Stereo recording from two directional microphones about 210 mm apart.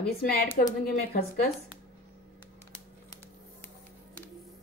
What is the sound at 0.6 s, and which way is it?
Speech, 35° left (ahead or behind).